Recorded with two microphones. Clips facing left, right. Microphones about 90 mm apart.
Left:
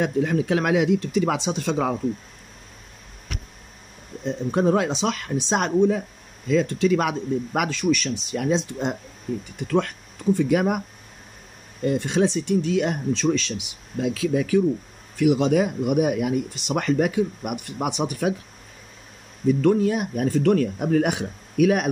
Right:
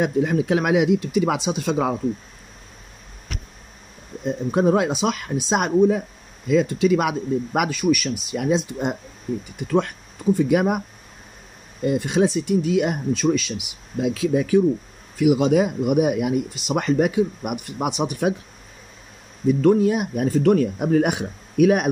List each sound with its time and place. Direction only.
0.0 s speech: 20° right (ahead or behind)
4.2 s speech: 15° right (ahead or behind)
11.8 s speech: 15° right (ahead or behind)
19.4 s speech: 15° right (ahead or behind)